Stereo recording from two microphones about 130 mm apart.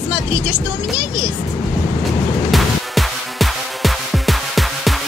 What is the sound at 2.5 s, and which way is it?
Music, centre (ahead or behind).